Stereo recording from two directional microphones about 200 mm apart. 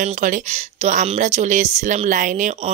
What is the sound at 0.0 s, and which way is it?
Speech, 40° right (ahead or behind).